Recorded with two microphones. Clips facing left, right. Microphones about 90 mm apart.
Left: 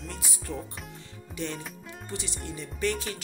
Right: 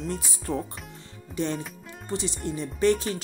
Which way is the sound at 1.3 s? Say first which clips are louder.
Right 6 dB; 30° right (ahead or behind).